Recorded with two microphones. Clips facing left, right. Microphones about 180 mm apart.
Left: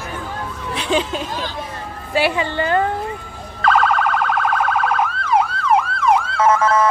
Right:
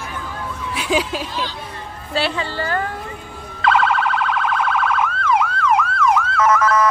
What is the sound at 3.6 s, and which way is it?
Siren, 45° left (ahead or behind).